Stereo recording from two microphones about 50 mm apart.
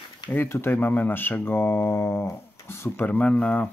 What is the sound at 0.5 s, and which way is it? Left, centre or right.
Speech, left.